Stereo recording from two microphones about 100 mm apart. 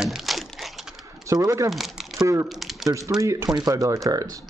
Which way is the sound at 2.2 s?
30° right (ahead or behind).